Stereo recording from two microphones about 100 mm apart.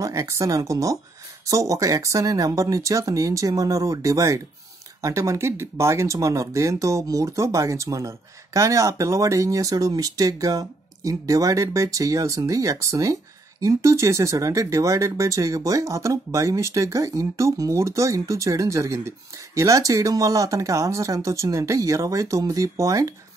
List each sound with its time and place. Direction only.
0.0 s speech: 30° right (ahead or behind)